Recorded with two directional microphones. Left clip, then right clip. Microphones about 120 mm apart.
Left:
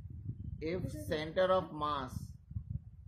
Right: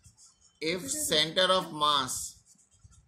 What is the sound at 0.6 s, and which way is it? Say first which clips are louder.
Speech: right 7 dB; 15° left (ahead or behind).